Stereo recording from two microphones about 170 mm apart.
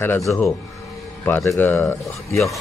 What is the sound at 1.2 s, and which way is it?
Speech, 10° left (ahead or behind).